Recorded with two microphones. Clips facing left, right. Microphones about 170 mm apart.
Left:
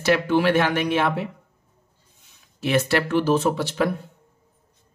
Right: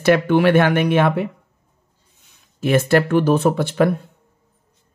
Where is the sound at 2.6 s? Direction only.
50° right (ahead or behind).